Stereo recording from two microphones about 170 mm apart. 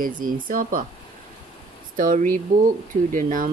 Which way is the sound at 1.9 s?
55° right (ahead or behind).